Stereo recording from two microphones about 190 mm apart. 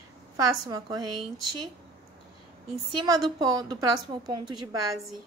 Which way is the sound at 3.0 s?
20° right (ahead or behind).